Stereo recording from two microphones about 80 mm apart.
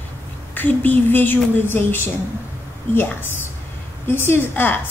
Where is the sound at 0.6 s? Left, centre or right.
Left.